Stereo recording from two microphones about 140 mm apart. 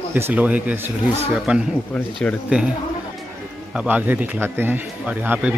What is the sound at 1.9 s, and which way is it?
Speech, 10° left (ahead or behind).